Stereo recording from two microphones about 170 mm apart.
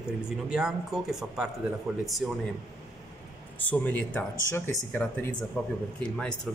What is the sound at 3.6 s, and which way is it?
Speech, 10° left (ahead or behind).